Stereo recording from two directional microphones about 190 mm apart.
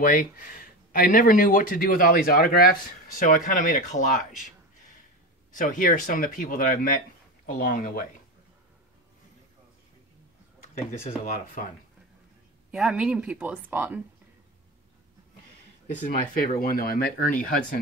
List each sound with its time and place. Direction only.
0.0 s speech: 45° left (ahead or behind)
5.5 s speech: 45° left (ahead or behind)
11.1 s speech: 40° left (ahead or behind)
12.7 s speech: 5° right (ahead or behind)
15.9 s speech: 50° left (ahead or behind)